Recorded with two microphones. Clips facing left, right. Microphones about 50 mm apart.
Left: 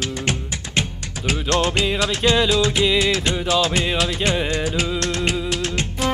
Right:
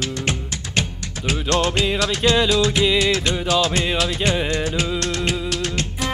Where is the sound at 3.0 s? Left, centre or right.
Centre.